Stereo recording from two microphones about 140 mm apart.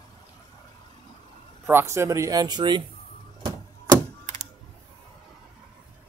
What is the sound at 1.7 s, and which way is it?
Speech, 20° right (ahead or behind).